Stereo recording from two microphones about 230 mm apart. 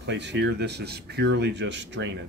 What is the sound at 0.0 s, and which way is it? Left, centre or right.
Speech, right.